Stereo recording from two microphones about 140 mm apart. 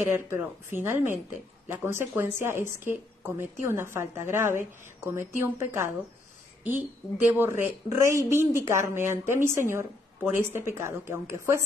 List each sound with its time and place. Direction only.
0.0 s a woman's voice: 15° right (ahead or behind)